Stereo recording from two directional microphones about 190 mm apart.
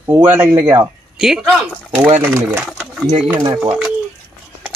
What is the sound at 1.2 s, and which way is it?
Speech, centre (ahead or behind).